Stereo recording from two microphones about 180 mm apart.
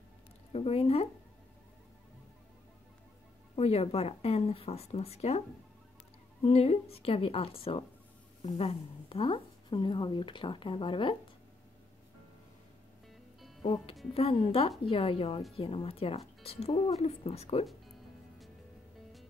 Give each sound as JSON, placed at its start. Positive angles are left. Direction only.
{"t": 0.5, "sound": "speech", "side_deg": 35}
{"t": 3.5, "sound": "speech", "side_deg": 35}
{"t": 6.4, "sound": "speech", "side_deg": 35}
{"t": 13.6, "sound": "speech", "side_deg": 35}